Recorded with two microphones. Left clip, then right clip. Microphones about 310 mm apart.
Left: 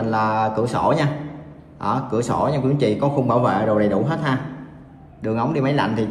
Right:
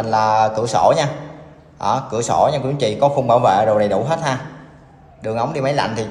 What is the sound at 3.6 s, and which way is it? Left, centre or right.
Speech, right.